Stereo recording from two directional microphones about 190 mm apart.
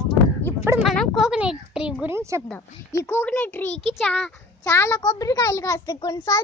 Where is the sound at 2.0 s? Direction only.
15° right (ahead or behind).